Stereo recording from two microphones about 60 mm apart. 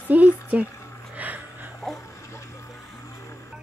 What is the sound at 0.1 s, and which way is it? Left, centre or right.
Speech, right.